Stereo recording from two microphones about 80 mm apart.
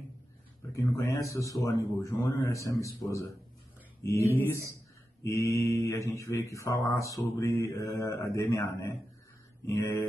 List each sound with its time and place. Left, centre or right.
0.7 s speech: left